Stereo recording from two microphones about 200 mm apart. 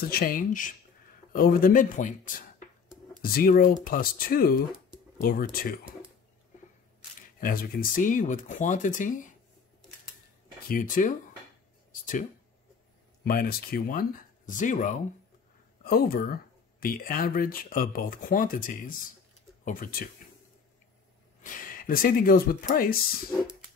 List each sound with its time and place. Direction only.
0.1 s speech: 45° left (ahead or behind)
7.2 s speech: 45° left (ahead or behind)
10.7 s speech: 40° left (ahead or behind)
21.4 s speech: 45° left (ahead or behind)